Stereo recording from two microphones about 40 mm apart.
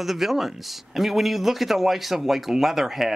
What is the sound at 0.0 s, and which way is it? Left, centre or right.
Speech, centre.